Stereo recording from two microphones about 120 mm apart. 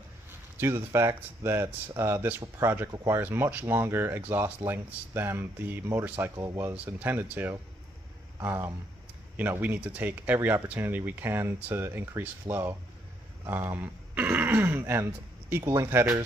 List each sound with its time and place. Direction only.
0.6 s speech: 20° right (ahead or behind)
6.3 s speech: 30° right (ahead or behind)
6.7 s speech: 15° right (ahead or behind)